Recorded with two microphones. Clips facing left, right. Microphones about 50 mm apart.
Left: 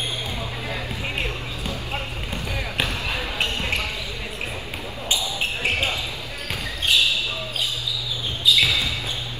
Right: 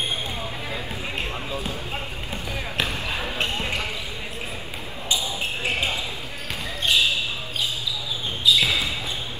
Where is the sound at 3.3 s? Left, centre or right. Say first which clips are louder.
Left 2 dB; left.